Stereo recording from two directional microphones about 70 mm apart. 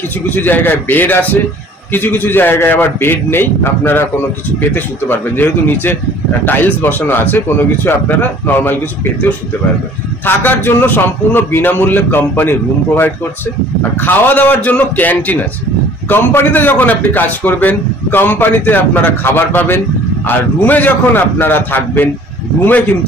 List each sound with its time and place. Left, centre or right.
0.3 s a man's voice: left
10.2 s a man's voice: left